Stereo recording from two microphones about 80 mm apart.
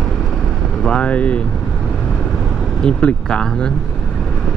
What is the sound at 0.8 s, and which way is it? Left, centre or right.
Speech, centre.